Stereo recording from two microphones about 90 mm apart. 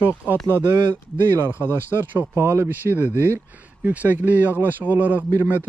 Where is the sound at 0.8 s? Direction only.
60° right (ahead or behind).